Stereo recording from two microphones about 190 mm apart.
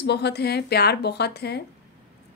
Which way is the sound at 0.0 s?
60° left (ahead or behind).